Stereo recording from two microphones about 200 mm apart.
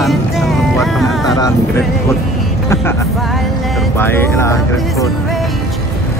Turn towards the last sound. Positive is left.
turn(degrees=15)  # may be behind; listen again after turning